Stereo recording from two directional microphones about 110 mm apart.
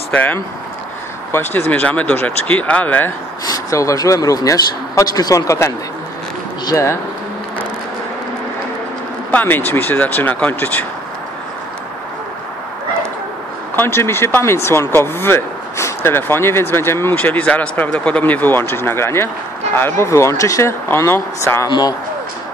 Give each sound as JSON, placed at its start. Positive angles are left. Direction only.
{"t": 0.1, "sound": "speech", "side_deg": 15}
{"t": 3.4, "sound": "speech", "side_deg": 30}
{"t": 9.3, "sound": "speech", "side_deg": 15}
{"t": 13.7, "sound": "speech", "side_deg": 20}
{"t": 21.6, "sound": "speech", "side_deg": 40}